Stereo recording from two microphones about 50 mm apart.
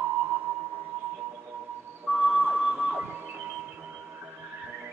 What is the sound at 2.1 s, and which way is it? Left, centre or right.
Music, centre.